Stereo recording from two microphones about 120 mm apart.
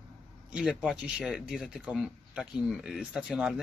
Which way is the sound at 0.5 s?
5° right (ahead or behind).